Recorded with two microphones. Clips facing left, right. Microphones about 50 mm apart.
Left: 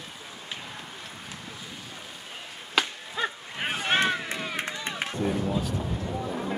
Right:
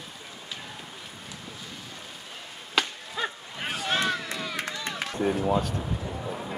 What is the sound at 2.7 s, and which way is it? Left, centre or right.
Chop, centre.